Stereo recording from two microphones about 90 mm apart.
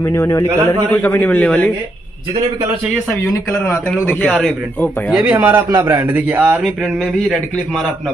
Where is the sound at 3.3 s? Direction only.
35° left (ahead or behind).